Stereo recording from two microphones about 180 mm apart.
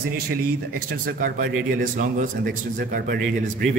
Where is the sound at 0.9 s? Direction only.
55° right (ahead or behind).